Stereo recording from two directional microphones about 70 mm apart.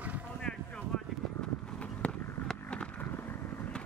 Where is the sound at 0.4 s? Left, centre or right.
Centre.